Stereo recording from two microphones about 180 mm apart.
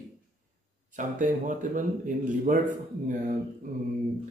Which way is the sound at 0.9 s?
45° right (ahead or behind).